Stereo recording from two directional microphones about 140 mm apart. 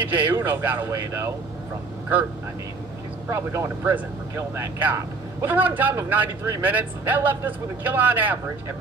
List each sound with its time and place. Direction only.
0.1 s speech: 15° right (ahead or behind)
3.3 s speech: 20° right (ahead or behind)